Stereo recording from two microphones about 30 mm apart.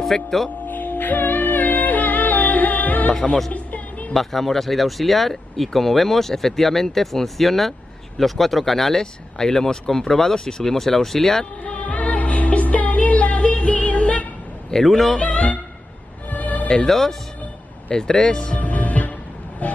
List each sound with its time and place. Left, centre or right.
0.1 s speech: centre
0.7 s music: left
3.5 s music: left
4.1 s speech: centre
11.6 s music: left
14.7 s a man's voice: left
15.1 s speech: left
16.3 s music: left
16.8 s speech: centre
17.9 s speech: left
18.6 s music: left
19.6 s vehicle: left